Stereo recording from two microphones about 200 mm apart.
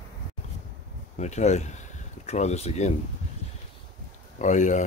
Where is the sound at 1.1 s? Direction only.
35° left (ahead or behind).